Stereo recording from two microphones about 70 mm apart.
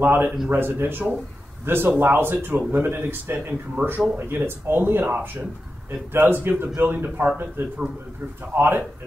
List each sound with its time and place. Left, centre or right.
0.0 s a man's voice: right